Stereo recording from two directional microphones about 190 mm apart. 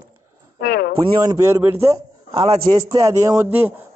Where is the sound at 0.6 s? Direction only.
55° left (ahead or behind).